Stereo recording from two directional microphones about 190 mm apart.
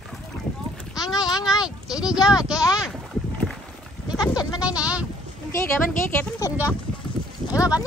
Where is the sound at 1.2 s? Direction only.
20° left (ahead or behind).